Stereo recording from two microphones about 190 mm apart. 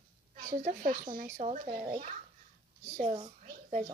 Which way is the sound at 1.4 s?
35° right (ahead or behind).